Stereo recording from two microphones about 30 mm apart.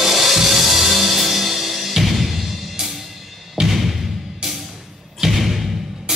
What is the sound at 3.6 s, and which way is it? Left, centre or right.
Music, right.